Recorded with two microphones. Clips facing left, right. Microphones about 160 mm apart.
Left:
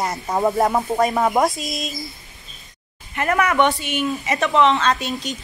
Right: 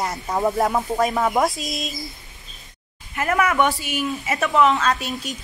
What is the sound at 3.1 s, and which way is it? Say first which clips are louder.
A woman's voice: left 1 dB; centre (ahead or behind).